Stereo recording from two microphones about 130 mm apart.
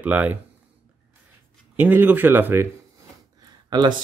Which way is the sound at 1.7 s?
15° right (ahead or behind).